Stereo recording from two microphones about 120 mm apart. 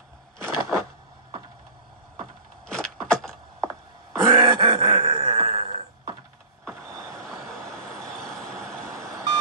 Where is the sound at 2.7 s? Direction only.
5° left (ahead or behind).